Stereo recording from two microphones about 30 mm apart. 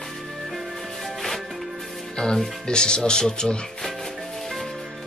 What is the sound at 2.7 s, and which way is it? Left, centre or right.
Speech, left.